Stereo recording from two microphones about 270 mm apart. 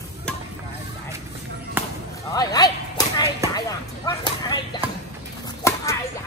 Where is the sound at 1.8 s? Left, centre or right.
Centre.